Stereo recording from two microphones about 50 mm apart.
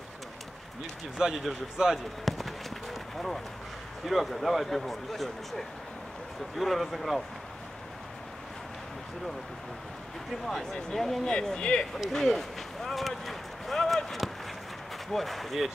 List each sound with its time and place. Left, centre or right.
1.4 s speech: centre
2.2 s a sound: centre
4.0 s speech: centre
10.4 s speech: centre
11.3 s speech: centre
12.1 s run: centre
15.1 s speech: centre